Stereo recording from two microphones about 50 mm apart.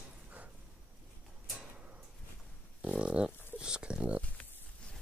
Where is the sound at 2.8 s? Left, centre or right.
Centre.